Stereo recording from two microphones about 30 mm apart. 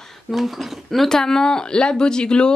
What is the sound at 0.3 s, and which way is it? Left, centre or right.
Speech, centre.